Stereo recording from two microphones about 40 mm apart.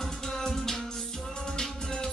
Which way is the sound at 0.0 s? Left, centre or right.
Centre.